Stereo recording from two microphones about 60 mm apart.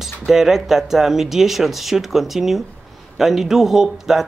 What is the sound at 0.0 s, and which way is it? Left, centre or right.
Speech, centre.